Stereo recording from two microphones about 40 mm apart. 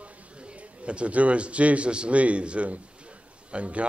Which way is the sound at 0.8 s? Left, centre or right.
Right.